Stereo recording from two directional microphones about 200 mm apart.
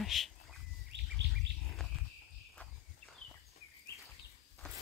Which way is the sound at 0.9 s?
65° right (ahead or behind).